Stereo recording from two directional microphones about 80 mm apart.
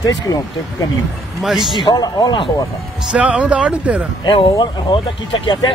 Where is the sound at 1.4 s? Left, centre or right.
Centre.